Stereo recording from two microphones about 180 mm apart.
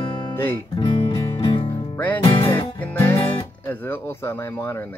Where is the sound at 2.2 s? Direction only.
30° left (ahead or behind).